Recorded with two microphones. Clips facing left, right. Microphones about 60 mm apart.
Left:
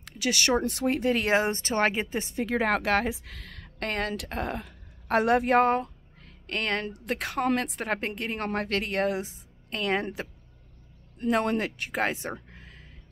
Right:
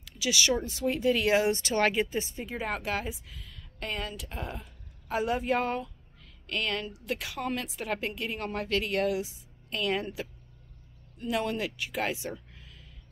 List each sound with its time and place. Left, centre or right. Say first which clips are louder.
0.0 s speech: left 2 dB; left
2.3 s a woman's voice: left 8 dB; left